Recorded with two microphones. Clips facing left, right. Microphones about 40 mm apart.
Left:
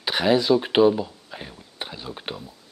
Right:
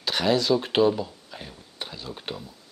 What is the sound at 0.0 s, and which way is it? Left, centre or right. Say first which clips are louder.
Speech: left 3 dB; centre.